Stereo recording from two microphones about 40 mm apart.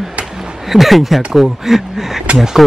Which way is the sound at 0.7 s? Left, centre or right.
Centre.